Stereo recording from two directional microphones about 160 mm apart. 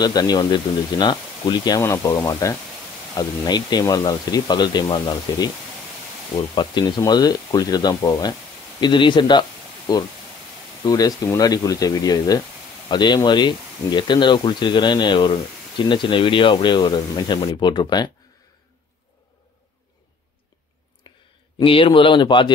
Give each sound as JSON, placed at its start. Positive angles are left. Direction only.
{"t": 0.0, "sound": "speech", "side_deg": 25}
{"t": 21.0, "sound": "a sound", "side_deg": 25}
{"t": 21.5, "sound": "speech", "side_deg": 35}